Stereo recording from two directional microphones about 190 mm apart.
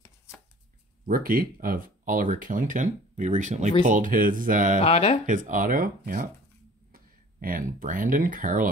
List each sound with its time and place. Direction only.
1.0 s speech: 45° right (ahead or behind)
4.8 s speech: 30° left (ahead or behind)
5.2 s speech: 45° right (ahead or behind)